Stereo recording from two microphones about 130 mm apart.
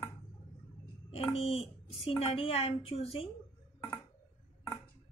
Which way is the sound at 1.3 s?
50° left (ahead or behind).